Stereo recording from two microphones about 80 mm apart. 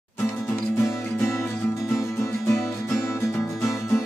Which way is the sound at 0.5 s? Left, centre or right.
Left.